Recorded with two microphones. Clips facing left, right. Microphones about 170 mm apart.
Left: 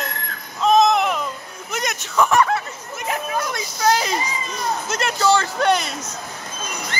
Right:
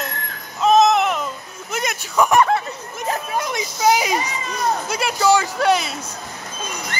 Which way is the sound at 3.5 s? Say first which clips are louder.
Right 3 dB; 10° right (ahead or behind).